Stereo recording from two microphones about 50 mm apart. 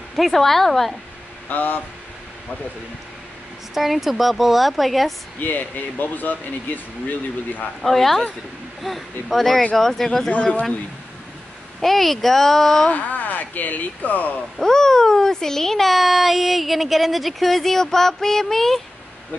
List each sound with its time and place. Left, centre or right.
0.1 s a child's voice: centre
1.5 s speech: left
3.7 s a child's voice: centre
5.4 s speech: left
7.8 s a child's voice: centre
10.3 s speech: left
11.8 s a child's voice: centre
12.9 s speech: left
14.6 s a child's voice: centre